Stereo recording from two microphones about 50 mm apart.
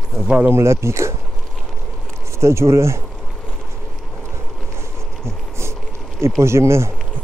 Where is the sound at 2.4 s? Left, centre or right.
Right.